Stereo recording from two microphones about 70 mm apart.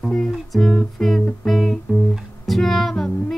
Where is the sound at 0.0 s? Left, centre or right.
Centre.